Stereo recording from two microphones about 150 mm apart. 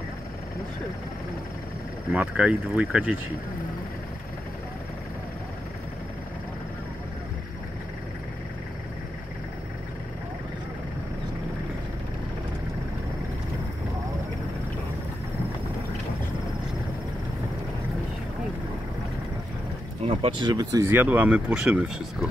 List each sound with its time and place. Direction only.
2.1 s speech: 10° right (ahead or behind)
20.1 s speech: 35° right (ahead or behind)
20.9 s speech: 10° right (ahead or behind)